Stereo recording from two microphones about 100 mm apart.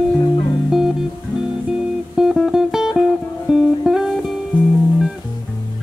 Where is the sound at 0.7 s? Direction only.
5° right (ahead or behind).